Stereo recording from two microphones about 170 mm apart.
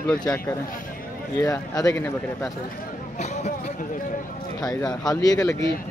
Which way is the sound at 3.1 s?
45° left (ahead or behind).